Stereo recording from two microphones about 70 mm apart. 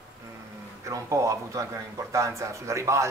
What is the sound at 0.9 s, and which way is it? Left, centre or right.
Speech, right.